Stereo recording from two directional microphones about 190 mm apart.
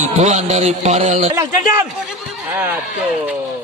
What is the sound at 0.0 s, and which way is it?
A man's voice, 35° right (ahead or behind).